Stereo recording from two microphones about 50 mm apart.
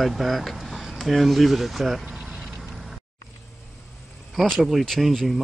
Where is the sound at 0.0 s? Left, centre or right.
Centre.